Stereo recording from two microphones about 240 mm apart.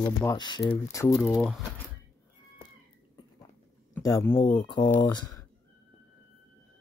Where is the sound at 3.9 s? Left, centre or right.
Centre.